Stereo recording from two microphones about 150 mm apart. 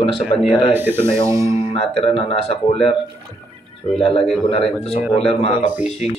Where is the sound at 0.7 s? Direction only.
15° right (ahead or behind).